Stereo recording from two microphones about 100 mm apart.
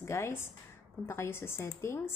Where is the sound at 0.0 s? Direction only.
25° left (ahead or behind).